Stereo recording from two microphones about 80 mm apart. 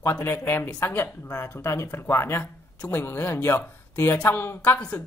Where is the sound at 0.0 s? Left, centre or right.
Left.